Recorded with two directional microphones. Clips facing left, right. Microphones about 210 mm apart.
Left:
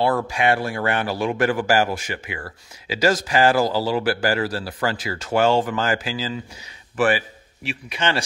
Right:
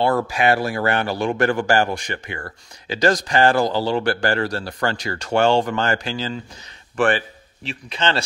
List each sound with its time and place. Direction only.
0.0 s speech: centre (ahead or behind)